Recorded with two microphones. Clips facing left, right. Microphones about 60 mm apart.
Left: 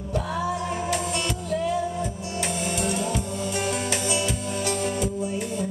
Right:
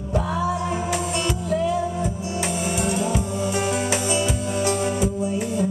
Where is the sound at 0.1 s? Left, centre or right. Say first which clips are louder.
Right 3 dB; centre.